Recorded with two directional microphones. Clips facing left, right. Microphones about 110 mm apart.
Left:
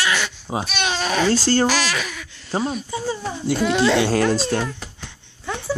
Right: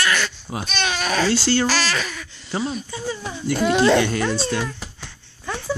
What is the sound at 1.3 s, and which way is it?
Speech, 45° left (ahead or behind).